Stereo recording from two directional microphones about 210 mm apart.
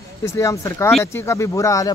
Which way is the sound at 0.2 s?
15° left (ahead or behind).